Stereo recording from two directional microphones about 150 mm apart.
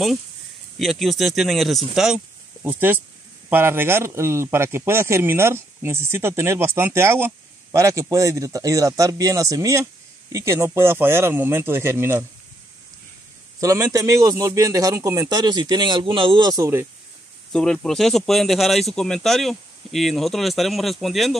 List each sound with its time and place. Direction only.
0.7 s a man's voice: centre (ahead or behind); by 12.3 s 15° right (ahead or behind)
13.6 s a man's voice: 25° right (ahead or behind)
17.5 s speech: 5° left (ahead or behind)